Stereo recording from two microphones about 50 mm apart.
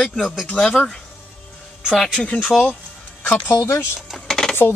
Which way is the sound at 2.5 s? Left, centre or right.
Centre.